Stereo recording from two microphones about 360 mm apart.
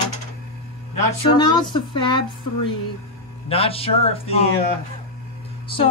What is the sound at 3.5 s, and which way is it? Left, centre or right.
Speech, centre.